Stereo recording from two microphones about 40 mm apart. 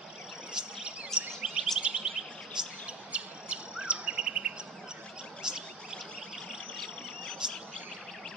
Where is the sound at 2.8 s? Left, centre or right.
Right.